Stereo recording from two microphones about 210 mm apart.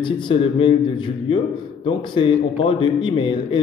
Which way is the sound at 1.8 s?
25° left (ahead or behind).